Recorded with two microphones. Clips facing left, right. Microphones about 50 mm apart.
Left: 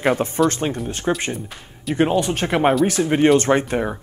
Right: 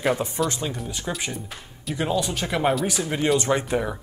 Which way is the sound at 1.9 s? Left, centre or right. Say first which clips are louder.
Left 6 dB; left.